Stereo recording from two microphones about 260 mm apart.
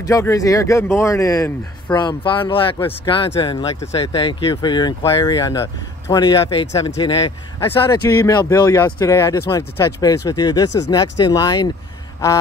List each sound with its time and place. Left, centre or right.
0.0 s speech: centre